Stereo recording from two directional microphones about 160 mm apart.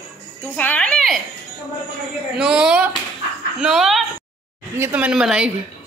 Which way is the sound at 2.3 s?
5° right (ahead or behind).